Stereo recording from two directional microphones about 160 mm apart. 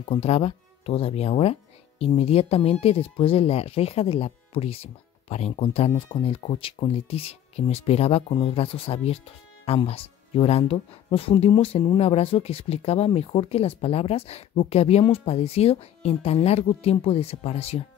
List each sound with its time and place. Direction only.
0.0 s speech: 40° left (ahead or behind)